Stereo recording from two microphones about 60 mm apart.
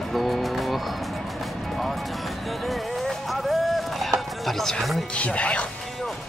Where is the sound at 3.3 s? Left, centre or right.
Centre.